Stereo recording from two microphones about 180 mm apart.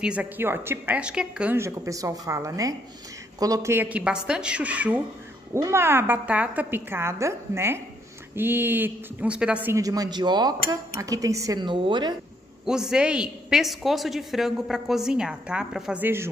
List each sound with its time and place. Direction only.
0.0 s a woman's voice: 5° right (ahead or behind); by 12.2 s 25° right (ahead or behind)
12.6 s speech: 5° right (ahead or behind)